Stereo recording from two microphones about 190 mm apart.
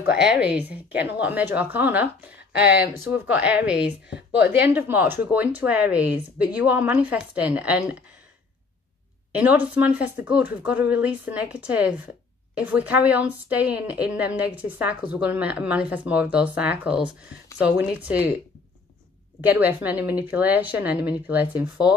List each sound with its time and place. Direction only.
0.1 s a woman's voice: 5° right (ahead or behind)
9.3 s a woman's voice: 10° right (ahead or behind)
19.4 s a woman's voice: 10° right (ahead or behind)